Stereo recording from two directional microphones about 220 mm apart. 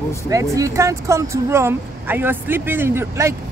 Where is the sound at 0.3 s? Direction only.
15° right (ahead or behind).